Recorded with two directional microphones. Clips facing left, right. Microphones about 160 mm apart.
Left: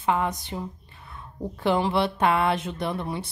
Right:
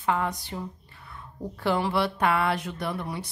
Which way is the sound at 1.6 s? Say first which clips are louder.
Left 2 dB; 20° left (ahead or behind).